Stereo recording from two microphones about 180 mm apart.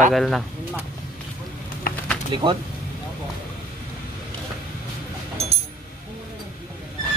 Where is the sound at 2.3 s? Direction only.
25° right (ahead or behind).